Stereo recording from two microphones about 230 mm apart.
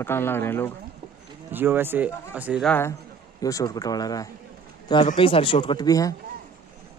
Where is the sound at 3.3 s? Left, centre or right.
Centre.